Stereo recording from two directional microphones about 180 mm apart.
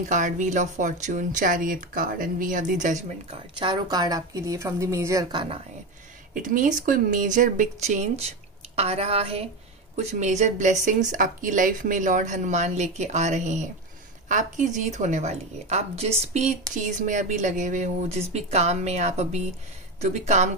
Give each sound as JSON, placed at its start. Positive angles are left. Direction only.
{"t": 0.1, "sound": "speech", "side_deg": -45}
{"t": 3.5, "sound": "a woman's voice", "side_deg": -25}
{"t": 6.3, "sound": "speech", "side_deg": -50}